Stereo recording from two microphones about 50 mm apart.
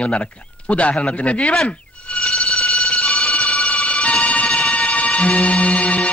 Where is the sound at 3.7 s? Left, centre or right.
Left.